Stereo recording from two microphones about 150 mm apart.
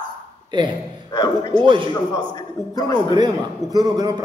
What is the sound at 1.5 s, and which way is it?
Speech, 35° right (ahead or behind).